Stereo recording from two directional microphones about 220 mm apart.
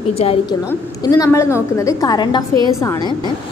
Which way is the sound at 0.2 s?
25° left (ahead or behind).